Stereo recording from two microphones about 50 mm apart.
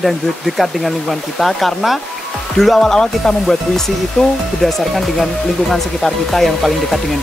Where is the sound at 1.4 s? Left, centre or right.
Centre.